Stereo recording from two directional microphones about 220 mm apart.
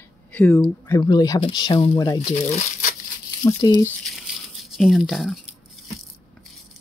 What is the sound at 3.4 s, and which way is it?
Speech, 15° left (ahead or behind).